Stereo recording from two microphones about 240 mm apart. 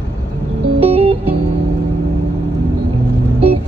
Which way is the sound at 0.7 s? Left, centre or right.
Right.